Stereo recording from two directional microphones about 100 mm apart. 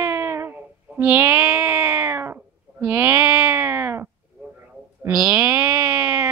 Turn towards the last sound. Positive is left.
turn(degrees=-20)  # may be behind; listen again after turning